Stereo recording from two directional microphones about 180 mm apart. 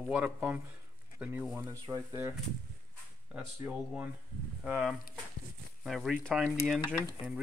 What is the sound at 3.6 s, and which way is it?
Speech, 10° right (ahead or behind).